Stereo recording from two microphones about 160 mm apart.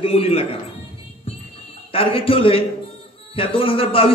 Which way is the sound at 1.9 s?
35° left (ahead or behind).